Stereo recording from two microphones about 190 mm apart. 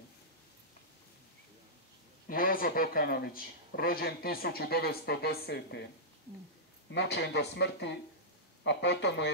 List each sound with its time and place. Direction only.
2.2 s speech: 50° left (ahead or behind)
6.9 s speech: 65° left (ahead or behind)